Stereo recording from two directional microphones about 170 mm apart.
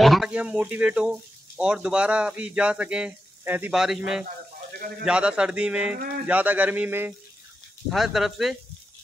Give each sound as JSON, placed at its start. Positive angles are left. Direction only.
{"t": 0.0, "sound": "speech", "side_deg": 0}
{"t": 5.9, "sound": "speech", "side_deg": -60}
{"t": 6.2, "sound": "speech", "side_deg": -10}